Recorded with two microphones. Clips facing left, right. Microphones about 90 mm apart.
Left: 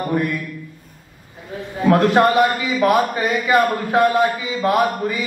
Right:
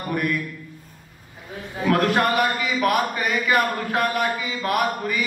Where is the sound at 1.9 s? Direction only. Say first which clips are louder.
Left 6 dB; 25° left (ahead or behind).